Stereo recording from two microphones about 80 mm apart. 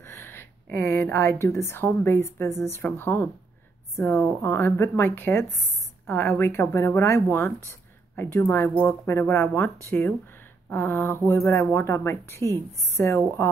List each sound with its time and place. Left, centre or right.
0.0 s a woman's voice: left